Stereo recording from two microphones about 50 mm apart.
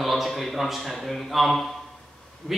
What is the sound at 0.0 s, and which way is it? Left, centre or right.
A man's voice, centre.